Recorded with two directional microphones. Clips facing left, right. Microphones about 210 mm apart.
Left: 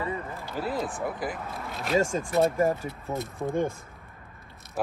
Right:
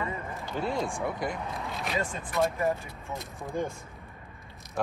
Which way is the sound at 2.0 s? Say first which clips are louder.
Left 6 dB; 45° left (ahead or behind).